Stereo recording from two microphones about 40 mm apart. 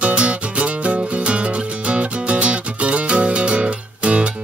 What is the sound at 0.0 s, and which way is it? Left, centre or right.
Music, right.